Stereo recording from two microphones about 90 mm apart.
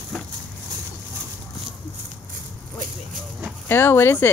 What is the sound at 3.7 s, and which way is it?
Speech, 30° left (ahead or behind).